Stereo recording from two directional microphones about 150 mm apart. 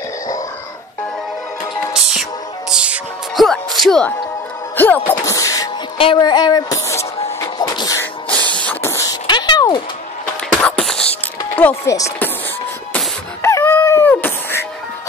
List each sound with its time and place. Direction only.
2.7 s music: 5° right (ahead or behind)
3.4 s speech: centre (ahead or behind); by 5.7 s 20° left (ahead or behind)
5.9 s music: 35° left (ahead or behind)
8.5 s a sound: 10° left (ahead or behind)
9.3 s a sound: 30° left (ahead or behind)
10.5 s music: 5° left (ahead or behind)